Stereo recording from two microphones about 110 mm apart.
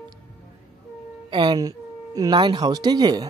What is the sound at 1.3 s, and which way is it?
Speech, 45° right (ahead or behind).